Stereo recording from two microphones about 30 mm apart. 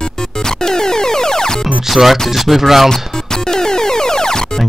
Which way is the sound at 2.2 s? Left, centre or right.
Centre.